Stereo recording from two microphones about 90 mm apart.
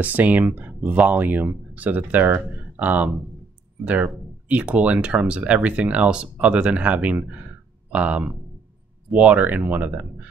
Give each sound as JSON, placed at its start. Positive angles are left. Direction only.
{"t": 0.0, "sound": "speech", "side_deg": -20}